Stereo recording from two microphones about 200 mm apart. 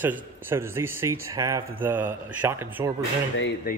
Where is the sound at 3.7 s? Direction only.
50° left (ahead or behind).